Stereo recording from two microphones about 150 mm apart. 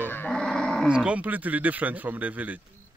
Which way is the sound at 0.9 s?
5° right (ahead or behind).